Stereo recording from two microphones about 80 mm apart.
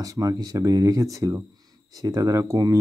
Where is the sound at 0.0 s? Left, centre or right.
Right.